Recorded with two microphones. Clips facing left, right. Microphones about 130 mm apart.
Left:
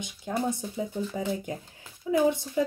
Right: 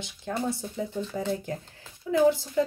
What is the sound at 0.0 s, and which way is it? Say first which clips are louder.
A woman's voice: left 1 dB; 20° left (ahead or behind).